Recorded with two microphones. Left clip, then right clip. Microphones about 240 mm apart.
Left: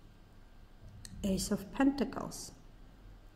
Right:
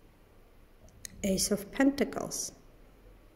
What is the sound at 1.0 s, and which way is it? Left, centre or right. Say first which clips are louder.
A woman's voice: right 6 dB; centre.